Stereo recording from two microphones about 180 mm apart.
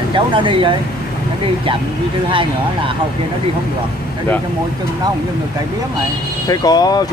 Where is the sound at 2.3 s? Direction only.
30° right (ahead or behind).